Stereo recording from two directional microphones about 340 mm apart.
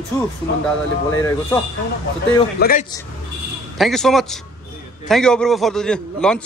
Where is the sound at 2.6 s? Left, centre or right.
Left.